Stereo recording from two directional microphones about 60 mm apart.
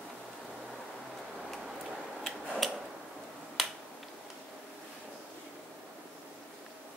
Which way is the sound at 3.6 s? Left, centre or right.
Centre.